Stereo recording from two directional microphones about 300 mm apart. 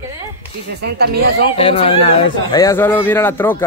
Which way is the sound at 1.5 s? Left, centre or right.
Centre.